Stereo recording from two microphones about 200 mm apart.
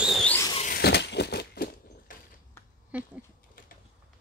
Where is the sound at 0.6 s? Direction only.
50° left (ahead or behind).